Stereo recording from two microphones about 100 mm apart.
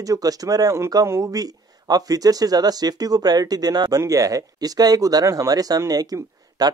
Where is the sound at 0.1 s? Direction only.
35° right (ahead or behind).